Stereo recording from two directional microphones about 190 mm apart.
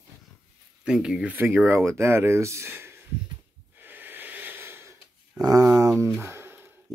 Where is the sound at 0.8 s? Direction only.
5° right (ahead or behind).